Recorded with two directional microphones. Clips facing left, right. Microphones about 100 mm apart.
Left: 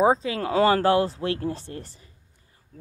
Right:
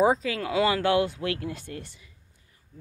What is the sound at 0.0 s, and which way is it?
Speech, 30° left (ahead or behind).